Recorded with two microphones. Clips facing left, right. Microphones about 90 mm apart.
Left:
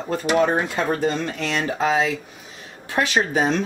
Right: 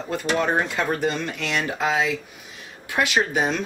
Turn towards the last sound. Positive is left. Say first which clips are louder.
# left 2 dB
turn(degrees=35)  # may be behind; listen again after turning